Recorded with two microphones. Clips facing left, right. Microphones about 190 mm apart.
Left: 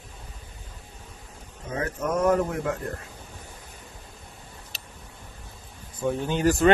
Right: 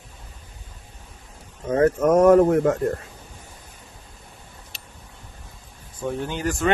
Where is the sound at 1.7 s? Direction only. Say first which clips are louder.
Right 10 dB; 50° right (ahead or behind).